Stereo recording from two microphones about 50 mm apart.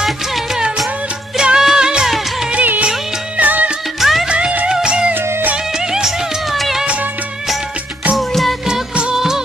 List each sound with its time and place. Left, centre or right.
1.3 s music: centre
2.5 s music: right
4.0 s music: centre
4.3 s music: right
5.1 s music: right
5.8 s music of bollywood: centre
6.5 s music: centre
8.2 s music: centre
9.1 s music of bollywood: centre